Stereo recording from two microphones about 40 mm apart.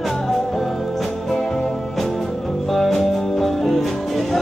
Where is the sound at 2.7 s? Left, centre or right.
Centre.